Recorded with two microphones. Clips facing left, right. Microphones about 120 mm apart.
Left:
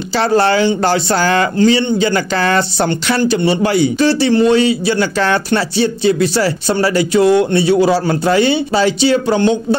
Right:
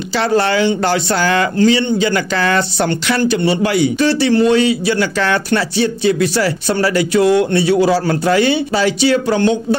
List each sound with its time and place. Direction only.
0.1 s speech: 35° left (ahead or behind)